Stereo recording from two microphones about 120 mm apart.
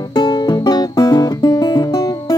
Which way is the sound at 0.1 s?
35° left (ahead or behind).